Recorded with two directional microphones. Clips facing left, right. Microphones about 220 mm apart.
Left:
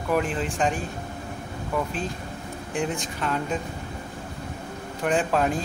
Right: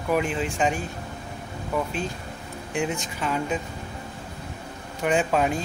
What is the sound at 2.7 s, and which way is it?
Speech, centre (ahead or behind).